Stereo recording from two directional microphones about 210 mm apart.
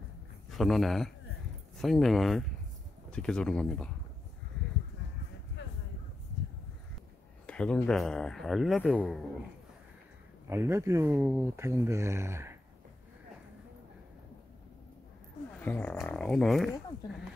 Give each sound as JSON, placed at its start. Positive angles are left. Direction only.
{"t": 0.5, "sound": "speech", "side_deg": 0}
{"t": 7.4, "sound": "speech", "side_deg": 5}
{"t": 10.5, "sound": "speech", "side_deg": -10}
{"t": 15.6, "sound": "speech", "side_deg": 5}